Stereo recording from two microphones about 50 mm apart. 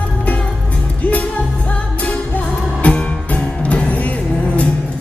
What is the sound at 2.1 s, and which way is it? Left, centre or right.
Music, left.